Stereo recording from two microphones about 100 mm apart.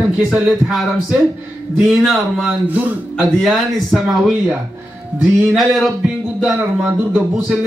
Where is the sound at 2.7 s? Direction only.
15° right (ahead or behind).